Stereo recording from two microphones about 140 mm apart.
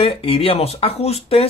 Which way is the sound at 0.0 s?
45° left (ahead or behind).